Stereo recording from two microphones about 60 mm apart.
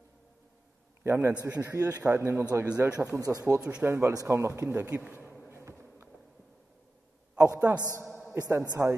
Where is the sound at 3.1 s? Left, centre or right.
Right.